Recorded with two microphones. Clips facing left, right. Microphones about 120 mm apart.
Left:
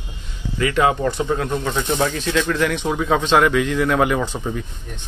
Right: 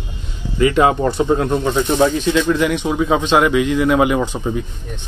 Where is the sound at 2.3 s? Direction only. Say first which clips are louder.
Right 4 dB; 10° right (ahead or behind).